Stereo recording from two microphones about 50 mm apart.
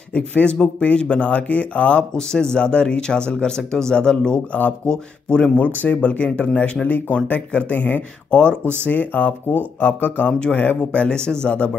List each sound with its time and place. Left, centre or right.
0.1 s speech: left
5.6 s speech: left
5.9 s speech: left
8.3 s speech: left
8.8 s speech: left